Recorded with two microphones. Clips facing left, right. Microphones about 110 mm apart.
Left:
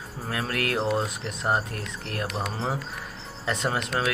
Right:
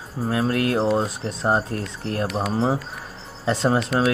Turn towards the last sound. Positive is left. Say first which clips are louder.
# right 6 dB
turn(degrees=0)  # may be behind; listen again after turning